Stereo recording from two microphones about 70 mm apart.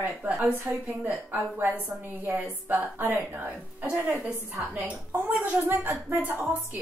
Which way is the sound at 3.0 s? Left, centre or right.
Right.